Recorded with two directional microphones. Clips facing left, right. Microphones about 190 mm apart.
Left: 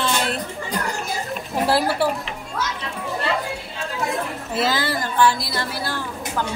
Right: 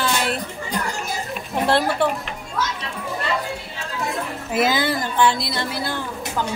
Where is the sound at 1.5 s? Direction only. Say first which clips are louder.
Right 1 dB; 5° left (ahead or behind).